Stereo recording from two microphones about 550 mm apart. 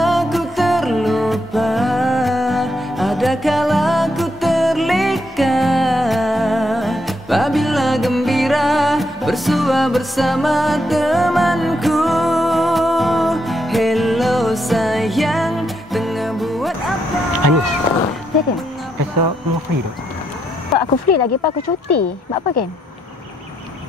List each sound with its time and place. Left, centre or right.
0.0 s music: centre
17.4 s cat: right
20.7 s speech: left